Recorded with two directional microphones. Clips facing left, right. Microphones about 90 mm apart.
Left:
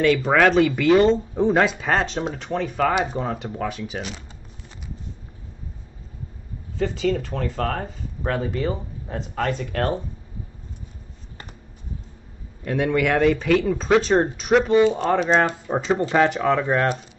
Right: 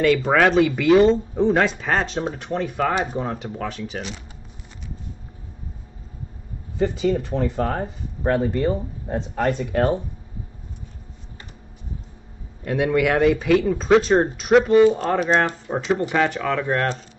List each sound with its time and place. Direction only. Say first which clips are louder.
0.0 s speech: even; centre (ahead or behind)
6.8 s speech: right 2 dB; 15° right (ahead or behind)
8.4 s speech: right 2 dB; centre (ahead or behind)
9.4 s speech: right 3 dB; 10° right (ahead or behind)
12.6 s speech: right 1 dB; 5° right (ahead or behind)
15.9 s speech: left 1 dB; 20° left (ahead or behind)
16.7 s speech: left 2 dB; 5° left (ahead or behind)